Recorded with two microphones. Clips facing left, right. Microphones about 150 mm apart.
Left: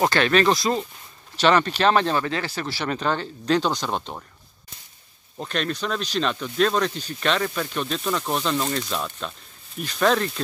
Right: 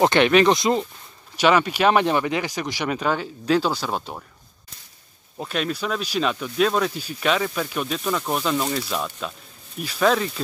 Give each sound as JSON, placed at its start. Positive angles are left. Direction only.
{"t": 0.0, "sound": "speech", "side_deg": -20}
{"t": 5.4, "sound": "speech", "side_deg": -5}